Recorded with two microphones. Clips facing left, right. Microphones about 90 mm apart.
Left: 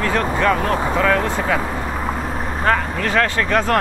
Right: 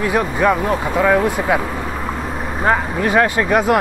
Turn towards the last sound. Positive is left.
turn(degrees=-10)  # may be behind; listen again after turning